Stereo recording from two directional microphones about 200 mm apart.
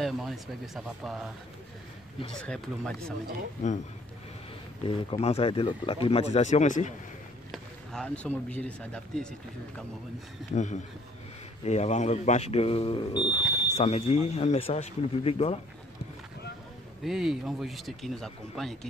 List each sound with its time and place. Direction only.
0.0 s speech: centre (ahead or behind)
2.4 s speech: centre (ahead or behind)
4.8 s speech: 25° left (ahead or behind)
7.5 s speech: 5° left (ahead or behind)
10.5 s speech: 35° left (ahead or behind)
17.0 s speech: centre (ahead or behind)